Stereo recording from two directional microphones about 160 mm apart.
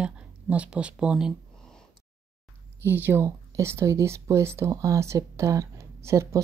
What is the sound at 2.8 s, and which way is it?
Speech, 10° right (ahead or behind).